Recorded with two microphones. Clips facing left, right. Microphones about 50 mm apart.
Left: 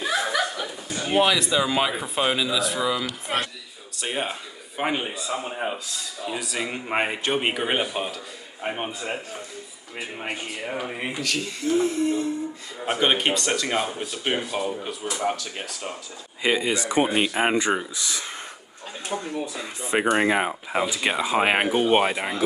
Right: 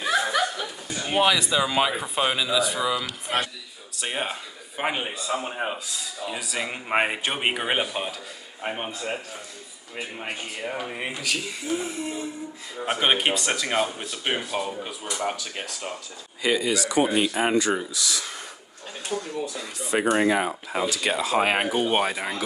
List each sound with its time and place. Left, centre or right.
0.6 s speech: centre
9.9 s speech: centre
16.4 s speech: left